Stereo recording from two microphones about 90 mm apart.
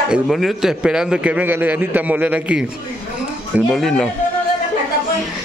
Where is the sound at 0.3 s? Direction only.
5° right (ahead or behind).